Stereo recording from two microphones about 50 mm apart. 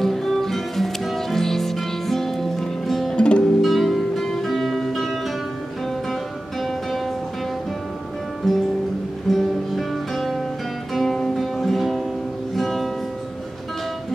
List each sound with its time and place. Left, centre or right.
0.0 s music: centre
3.2 s music: left
3.6 s music: centre
8.4 s music: centre
9.3 s guitar: centre
11.0 s music: centre